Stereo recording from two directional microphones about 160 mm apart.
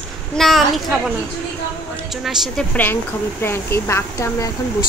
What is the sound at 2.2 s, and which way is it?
Speech, centre (ahead or behind).